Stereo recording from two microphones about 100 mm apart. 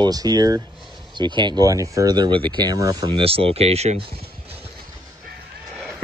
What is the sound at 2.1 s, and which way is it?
Speech, 50° right (ahead or behind).